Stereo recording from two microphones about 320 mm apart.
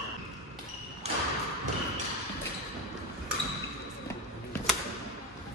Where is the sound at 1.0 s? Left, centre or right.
Centre.